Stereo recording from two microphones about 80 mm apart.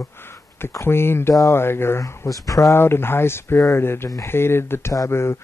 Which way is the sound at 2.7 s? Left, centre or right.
Left.